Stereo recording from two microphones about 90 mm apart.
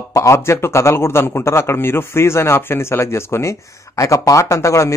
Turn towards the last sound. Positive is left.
turn(degrees=35)  # may be behind; listen again after turning